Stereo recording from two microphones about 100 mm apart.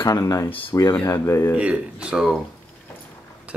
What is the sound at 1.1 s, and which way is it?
Speech, 25° left (ahead or behind).